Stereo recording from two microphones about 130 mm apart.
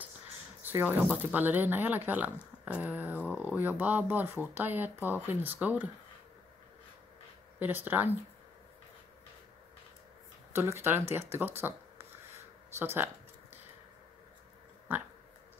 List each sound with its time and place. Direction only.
0.6 s a sound: 15° right (ahead or behind)
1.1 s speech: 15° right (ahead or behind)
7.5 s speech: 15° right (ahead or behind)
10.5 s speech: 20° right (ahead or behind)
12.7 s speech: 20° right (ahead or behind)